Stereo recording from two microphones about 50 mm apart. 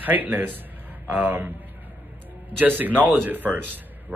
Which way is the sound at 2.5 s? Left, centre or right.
Right.